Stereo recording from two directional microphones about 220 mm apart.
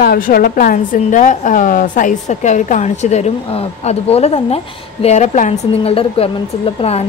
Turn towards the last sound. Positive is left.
turn(degrees=30)  # may be behind; listen again after turning